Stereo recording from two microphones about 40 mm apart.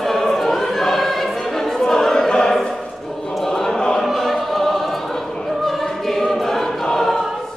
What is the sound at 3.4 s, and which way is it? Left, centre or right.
Chant, centre.